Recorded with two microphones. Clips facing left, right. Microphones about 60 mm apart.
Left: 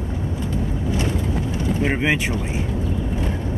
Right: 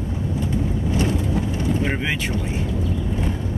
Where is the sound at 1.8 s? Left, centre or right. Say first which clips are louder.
Left 3 dB; centre.